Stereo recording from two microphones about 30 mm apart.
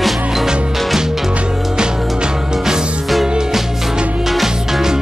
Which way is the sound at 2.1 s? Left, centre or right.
Right.